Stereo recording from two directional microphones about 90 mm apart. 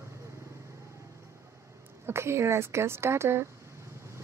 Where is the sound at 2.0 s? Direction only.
30° right (ahead or behind).